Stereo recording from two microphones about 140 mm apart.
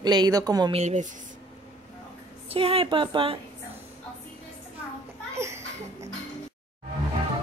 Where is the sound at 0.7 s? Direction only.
55° right (ahead or behind).